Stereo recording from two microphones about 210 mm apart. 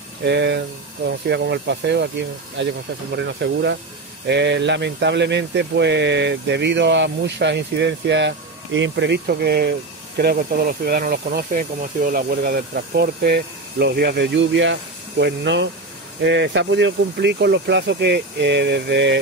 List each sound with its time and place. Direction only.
0.2 s speech: 55° right (ahead or behind)